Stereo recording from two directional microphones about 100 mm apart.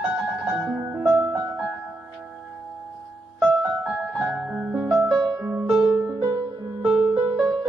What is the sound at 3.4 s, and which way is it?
Music, 10° right (ahead or behind).